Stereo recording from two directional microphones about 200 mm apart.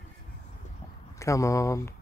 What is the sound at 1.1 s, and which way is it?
Speech, 15° left (ahead or behind).